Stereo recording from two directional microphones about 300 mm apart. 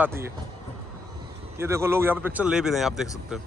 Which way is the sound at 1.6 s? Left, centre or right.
Centre.